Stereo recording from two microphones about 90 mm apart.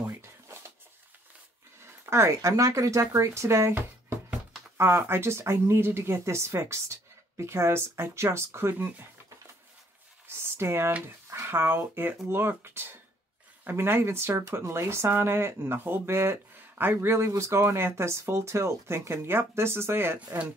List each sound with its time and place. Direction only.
0.0 s a sound: 30° right (ahead or behind)
1.8 s speech: 30° right (ahead or behind)
10.2 s speech: 30° right (ahead or behind)